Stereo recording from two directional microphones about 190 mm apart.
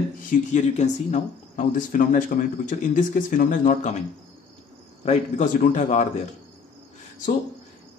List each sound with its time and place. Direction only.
0.3 s speech: 40° left (ahead or behind)
5.0 s a man's voice: 40° left (ahead or behind)